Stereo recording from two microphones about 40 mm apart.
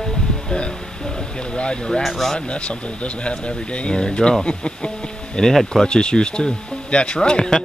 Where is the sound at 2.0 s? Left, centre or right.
Centre.